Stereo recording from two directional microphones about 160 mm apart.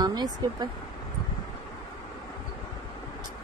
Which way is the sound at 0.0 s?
25° right (ahead or behind).